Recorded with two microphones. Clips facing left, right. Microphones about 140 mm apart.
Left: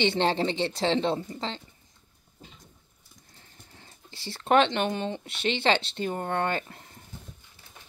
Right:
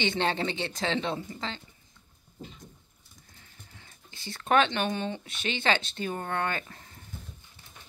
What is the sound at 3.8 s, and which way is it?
Speech, 30° left (ahead or behind).